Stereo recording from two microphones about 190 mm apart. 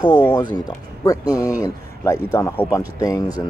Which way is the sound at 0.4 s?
20° left (ahead or behind).